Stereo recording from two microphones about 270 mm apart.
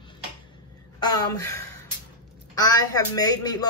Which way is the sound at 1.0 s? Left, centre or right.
Centre.